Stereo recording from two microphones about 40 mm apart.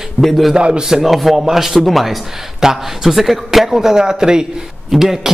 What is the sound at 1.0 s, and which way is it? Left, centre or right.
A man's voice, centre.